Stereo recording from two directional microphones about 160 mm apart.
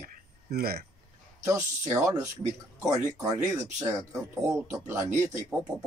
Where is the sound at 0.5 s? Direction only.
75° right (ahead or behind).